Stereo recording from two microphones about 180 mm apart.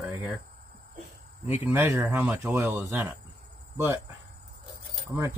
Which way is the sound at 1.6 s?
15° right (ahead or behind).